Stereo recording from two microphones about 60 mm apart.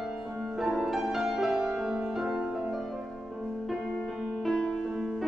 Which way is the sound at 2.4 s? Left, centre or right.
Centre.